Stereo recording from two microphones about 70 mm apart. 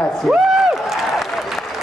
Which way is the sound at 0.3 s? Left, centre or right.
Centre.